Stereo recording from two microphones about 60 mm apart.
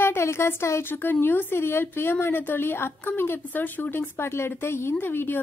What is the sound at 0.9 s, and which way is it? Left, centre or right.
A woman's voice, left.